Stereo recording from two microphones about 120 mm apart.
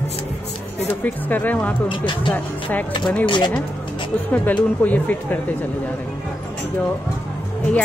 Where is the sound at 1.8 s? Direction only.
45° left (ahead or behind).